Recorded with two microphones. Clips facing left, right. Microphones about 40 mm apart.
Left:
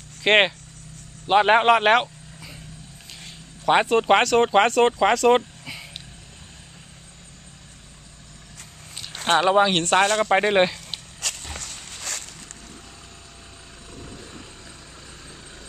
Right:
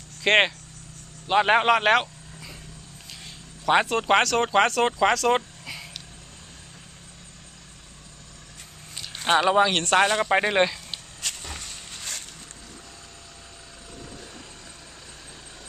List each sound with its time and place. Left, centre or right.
0.2 s speech: centre
1.2 s vehicle: centre
3.6 s speech: centre
8.9 s speech: centre
10.0 s speech: centre
10.3 s speech: centre